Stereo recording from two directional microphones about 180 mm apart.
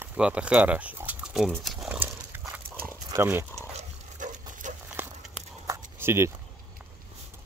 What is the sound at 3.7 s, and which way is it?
Pig, 45° right (ahead or behind).